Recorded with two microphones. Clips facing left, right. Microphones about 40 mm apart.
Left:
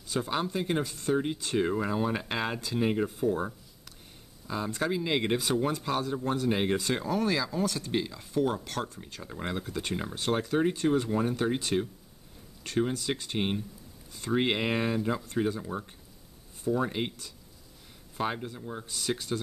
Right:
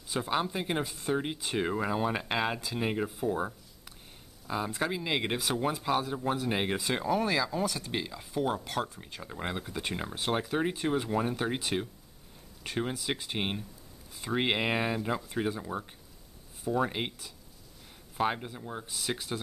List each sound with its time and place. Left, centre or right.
0.1 s speech: centre